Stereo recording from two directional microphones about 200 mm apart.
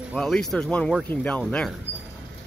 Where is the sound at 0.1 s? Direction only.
5° left (ahead or behind).